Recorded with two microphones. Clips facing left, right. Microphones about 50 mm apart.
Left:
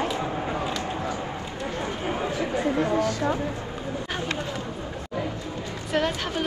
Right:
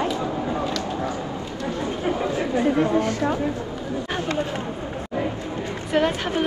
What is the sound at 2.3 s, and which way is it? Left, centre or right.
Speech, right.